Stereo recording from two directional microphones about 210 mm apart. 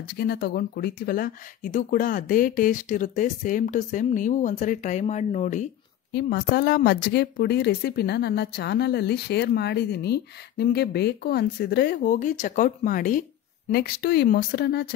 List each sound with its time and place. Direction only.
0.0 s speech: 50° left (ahead or behind)
6.1 s speech: 50° left (ahead or behind)